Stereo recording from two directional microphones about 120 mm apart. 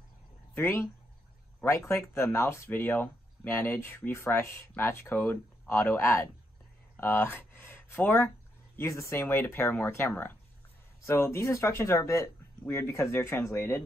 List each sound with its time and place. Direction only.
0.6 s speech: 20° left (ahead or behind)